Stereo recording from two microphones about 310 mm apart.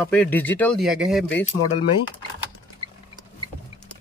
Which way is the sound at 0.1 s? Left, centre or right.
Centre.